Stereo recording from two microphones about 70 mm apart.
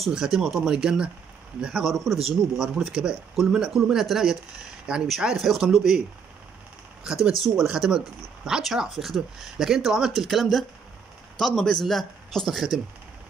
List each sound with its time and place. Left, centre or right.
0.0 s speech: centre
7.1 s speech: centre